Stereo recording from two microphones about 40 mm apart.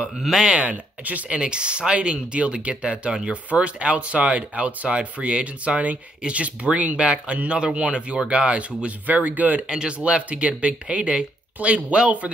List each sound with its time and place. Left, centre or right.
0.2 s speech: centre
0.7 s speech: right
1.4 s speech: right
9.0 s speech: right
9.7 s speech: right
9.9 s speech: right